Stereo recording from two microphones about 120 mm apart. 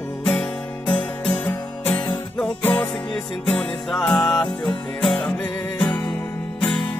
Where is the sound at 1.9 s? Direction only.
35° left (ahead or behind).